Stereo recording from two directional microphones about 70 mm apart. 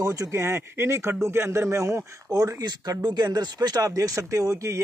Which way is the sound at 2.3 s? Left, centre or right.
Right.